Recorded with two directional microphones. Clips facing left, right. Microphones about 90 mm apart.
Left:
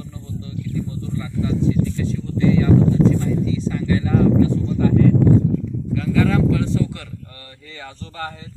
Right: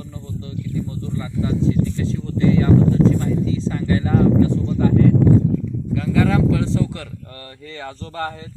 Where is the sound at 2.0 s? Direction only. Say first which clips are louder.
Even; 25° right (ahead or behind).